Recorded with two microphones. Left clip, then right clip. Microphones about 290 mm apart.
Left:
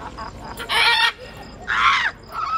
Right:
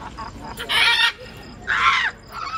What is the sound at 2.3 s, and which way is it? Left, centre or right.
Crow, centre.